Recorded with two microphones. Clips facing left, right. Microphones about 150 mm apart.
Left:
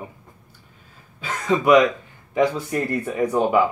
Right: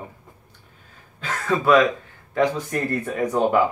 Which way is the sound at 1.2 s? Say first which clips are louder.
Left 2 dB; 15° left (ahead or behind).